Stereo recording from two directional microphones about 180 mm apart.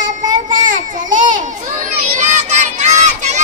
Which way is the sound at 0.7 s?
45° right (ahead or behind).